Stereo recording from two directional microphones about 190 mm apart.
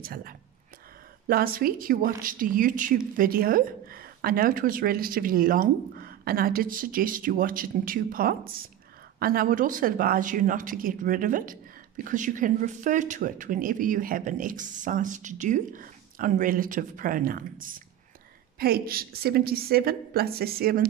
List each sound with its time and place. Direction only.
0.0 s a woman's voice: 50° right (ahead or behind)